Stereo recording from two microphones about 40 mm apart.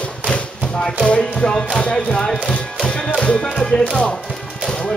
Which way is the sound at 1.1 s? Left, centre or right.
Centre.